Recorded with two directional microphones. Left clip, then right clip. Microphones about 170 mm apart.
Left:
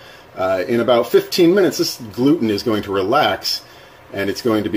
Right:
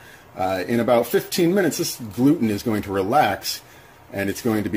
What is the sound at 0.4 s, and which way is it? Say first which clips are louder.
Speech: left 5 dB; 50° right (ahead or behind).